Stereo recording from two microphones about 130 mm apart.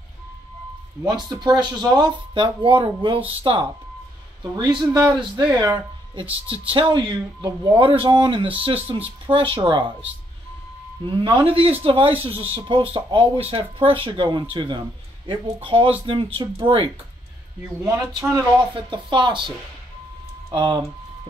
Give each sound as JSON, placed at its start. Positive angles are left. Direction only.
{"t": 1.4, "sound": "speech", "side_deg": -35}
{"t": 6.4, "sound": "speech", "side_deg": -45}
{"t": 11.3, "sound": "speech", "side_deg": -45}
{"t": 18.3, "sound": "speech", "side_deg": -35}
{"t": 20.5, "sound": "speech", "side_deg": -40}